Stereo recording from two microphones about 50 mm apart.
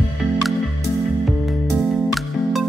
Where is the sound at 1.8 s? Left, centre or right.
Centre.